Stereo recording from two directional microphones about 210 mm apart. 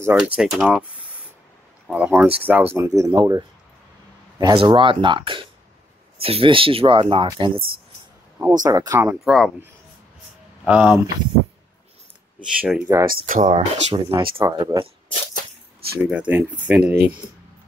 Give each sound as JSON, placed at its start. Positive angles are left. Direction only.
{"t": 0.0, "sound": "speech", "side_deg": -5}
{"t": 1.9, "sound": "speech", "side_deg": -5}
{"t": 9.2, "sound": "speech", "side_deg": 0}
{"t": 12.4, "sound": "speech", "side_deg": -5}
{"t": 12.8, "sound": "speech", "side_deg": -15}
{"t": 13.3, "sound": "speech", "side_deg": -35}
{"t": 14.0, "sound": "speech", "side_deg": -20}
{"t": 16.0, "sound": "speech", "side_deg": -5}